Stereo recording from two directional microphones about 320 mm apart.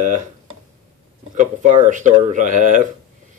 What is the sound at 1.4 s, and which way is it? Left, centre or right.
Speech, right.